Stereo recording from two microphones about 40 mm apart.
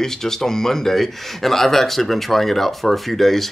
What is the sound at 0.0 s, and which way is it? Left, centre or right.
Speech, centre.